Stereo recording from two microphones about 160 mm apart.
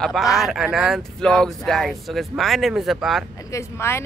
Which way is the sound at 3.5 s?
15° left (ahead or behind).